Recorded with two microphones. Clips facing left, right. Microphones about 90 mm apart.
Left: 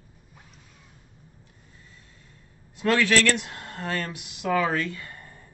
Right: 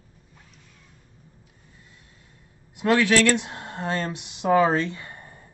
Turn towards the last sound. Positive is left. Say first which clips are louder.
# right 1 dB
turn(degrees=-20)  # may be behind; listen again after turning